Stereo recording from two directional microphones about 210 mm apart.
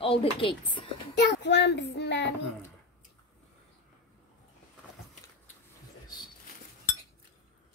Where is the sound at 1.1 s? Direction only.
55° left (ahead or behind).